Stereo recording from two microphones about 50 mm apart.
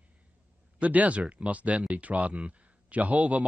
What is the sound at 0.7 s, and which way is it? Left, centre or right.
Speech, right.